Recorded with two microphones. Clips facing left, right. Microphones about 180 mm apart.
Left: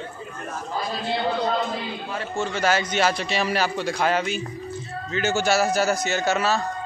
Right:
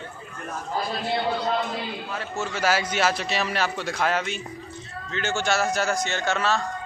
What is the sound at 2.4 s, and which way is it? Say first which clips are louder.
A man's voice: left 2 dB; 5° right (ahead or behind).